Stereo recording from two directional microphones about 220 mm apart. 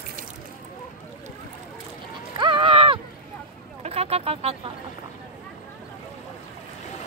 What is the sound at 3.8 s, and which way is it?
Vehicle, 25° right (ahead or behind).